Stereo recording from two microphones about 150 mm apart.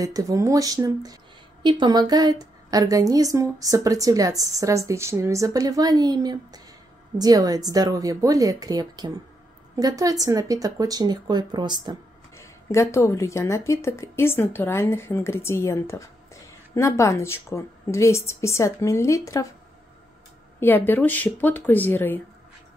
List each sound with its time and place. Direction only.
0.0 s a woman's voice: 25° right (ahead or behind)
12.4 s speech: 20° left (ahead or behind)
20.6 s speech: 10° left (ahead or behind)